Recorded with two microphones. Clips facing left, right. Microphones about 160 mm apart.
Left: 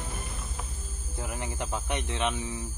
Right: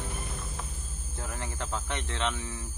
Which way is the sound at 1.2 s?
15° left (ahead or behind).